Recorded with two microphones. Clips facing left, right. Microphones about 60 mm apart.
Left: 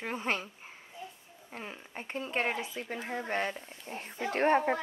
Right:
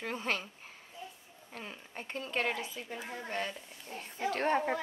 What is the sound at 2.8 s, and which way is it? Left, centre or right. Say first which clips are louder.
Speech: left 5 dB; left.